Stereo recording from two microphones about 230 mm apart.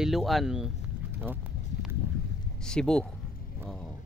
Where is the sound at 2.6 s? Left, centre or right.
Centre.